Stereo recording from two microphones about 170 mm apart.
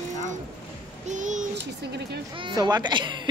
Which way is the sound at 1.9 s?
75° right (ahead or behind).